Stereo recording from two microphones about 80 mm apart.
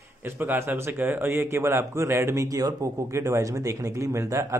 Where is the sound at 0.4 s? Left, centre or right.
Right.